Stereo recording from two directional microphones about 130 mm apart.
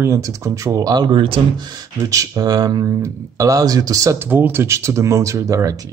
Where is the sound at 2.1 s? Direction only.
25° right (ahead or behind).